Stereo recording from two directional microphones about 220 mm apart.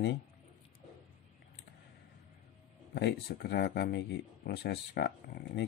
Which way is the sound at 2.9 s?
45° left (ahead or behind).